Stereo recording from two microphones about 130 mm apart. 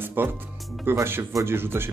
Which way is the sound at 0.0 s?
15° right (ahead or behind).